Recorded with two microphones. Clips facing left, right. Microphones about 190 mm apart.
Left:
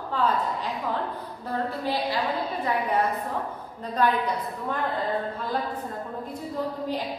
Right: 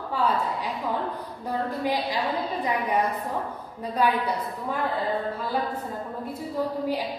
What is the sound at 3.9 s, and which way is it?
Speech, 10° right (ahead or behind).